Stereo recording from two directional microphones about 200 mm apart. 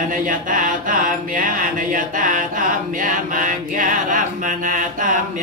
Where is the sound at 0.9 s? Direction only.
40° right (ahead or behind).